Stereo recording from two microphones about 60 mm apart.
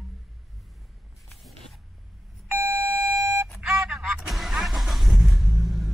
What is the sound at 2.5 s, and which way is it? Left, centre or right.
Alarm, right.